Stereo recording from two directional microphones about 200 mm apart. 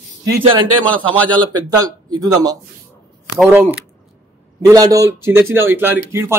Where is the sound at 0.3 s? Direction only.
25° right (ahead or behind).